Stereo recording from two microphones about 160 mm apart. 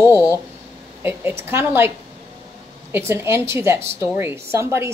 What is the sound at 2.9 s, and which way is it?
A woman's voice, 15° right (ahead or behind).